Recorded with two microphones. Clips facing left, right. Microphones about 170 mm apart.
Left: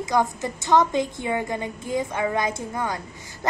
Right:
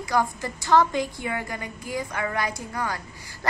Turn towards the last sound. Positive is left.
turn(degrees=20)  # may be behind; listen again after turning